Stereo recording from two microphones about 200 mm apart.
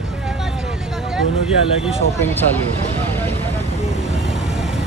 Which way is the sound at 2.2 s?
10° left (ahead or behind).